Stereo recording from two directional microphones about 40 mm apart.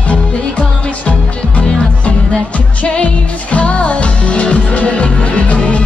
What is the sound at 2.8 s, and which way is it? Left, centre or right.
Music, left.